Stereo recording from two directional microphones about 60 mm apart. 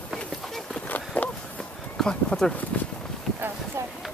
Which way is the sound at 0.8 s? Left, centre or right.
Left.